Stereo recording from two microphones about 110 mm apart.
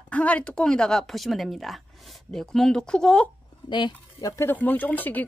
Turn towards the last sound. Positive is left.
turn(degrees=15)  # may be behind; listen again after turning